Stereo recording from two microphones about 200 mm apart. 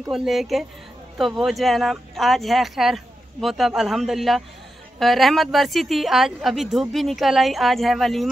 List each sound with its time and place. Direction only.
0.1 s a woman's voice: centre (ahead or behind)